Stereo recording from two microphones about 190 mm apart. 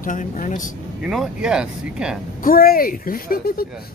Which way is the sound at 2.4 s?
50° left (ahead or behind).